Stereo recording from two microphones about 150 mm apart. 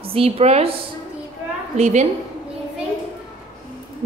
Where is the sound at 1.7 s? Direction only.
50° right (ahead or behind).